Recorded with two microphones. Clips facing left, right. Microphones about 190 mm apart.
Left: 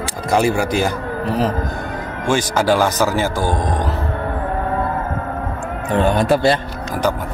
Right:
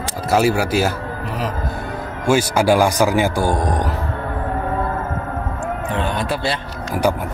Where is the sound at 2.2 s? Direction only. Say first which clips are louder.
Right 1 dB; 10° right (ahead or behind).